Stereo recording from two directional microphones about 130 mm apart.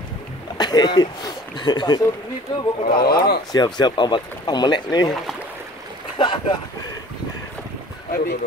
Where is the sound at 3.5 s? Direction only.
35° left (ahead or behind).